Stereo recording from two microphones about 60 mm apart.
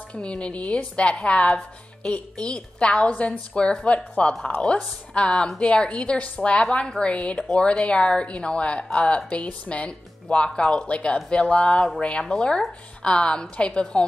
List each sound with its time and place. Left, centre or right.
0.1 s a woman's voice: centre